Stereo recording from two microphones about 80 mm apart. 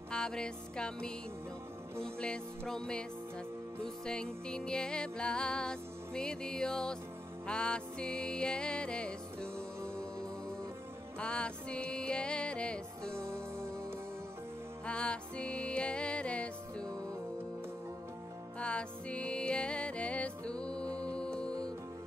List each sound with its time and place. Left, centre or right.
0.1 s music: centre
2.1 s music: centre
11.1 s music: centre
13.1 s music: right
14.9 s music: centre
18.6 s music: centre